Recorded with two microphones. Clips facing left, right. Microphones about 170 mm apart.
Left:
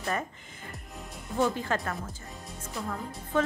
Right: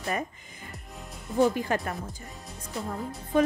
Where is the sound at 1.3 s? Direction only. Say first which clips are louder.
Right 4 dB; 15° right (ahead or behind).